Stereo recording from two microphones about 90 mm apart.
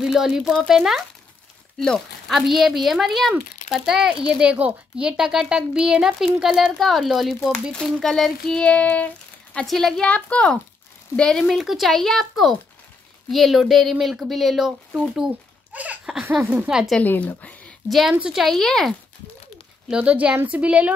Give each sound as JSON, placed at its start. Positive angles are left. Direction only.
{"t": 0.0, "sound": "speech", "side_deg": -5}
{"t": 7.7, "sound": "child singing", "side_deg": 10}
{"t": 9.7, "sound": "speech", "side_deg": 5}
{"t": 10.0, "sound": "child singing", "side_deg": 15}
{"t": 11.1, "sound": "speech", "side_deg": 10}
{"t": 16.6, "sound": "speech", "side_deg": -10}
{"t": 17.0, "sound": "a woman's voice", "side_deg": 20}
{"t": 17.8, "sound": "speech", "side_deg": 0}
{"t": 19.9, "sound": "speech", "side_deg": -15}